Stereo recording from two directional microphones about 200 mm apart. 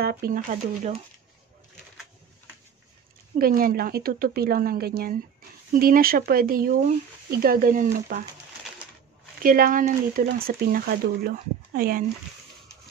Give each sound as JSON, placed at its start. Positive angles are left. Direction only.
{"t": 0.0, "sound": "speech", "side_deg": -50}
{"t": 3.3, "sound": "speech", "side_deg": -45}
{"t": 9.4, "sound": "speech", "side_deg": -45}